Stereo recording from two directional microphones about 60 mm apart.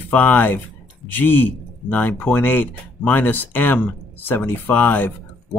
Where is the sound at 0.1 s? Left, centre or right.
Left.